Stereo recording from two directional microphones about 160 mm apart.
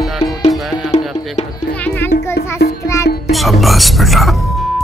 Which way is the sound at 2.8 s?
20° left (ahead or behind).